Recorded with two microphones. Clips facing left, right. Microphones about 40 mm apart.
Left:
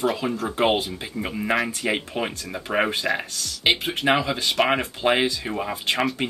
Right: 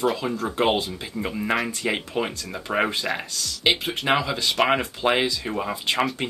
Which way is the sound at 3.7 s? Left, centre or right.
Centre.